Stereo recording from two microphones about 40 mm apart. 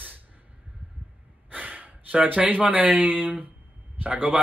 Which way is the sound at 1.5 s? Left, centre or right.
Right.